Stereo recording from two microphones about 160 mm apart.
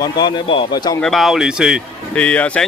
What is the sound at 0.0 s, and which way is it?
Speech, 30° left (ahead or behind).